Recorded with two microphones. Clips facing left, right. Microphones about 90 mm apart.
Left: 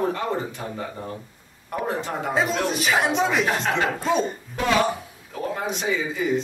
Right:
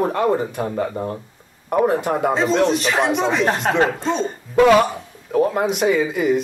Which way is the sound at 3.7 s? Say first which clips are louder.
Right 6 dB; 45° right (ahead or behind).